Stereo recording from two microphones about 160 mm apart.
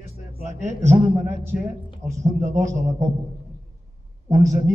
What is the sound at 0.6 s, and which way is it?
Speech, 45° right (ahead or behind).